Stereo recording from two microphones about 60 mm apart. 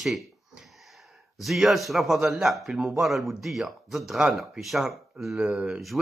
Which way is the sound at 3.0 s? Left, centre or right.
Centre.